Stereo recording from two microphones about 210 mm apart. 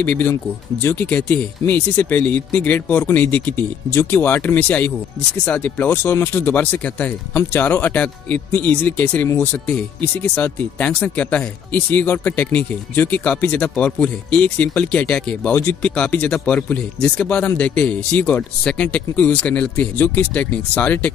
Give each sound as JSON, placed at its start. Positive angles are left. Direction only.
{"t": 0.0, "sound": "speech", "side_deg": 10}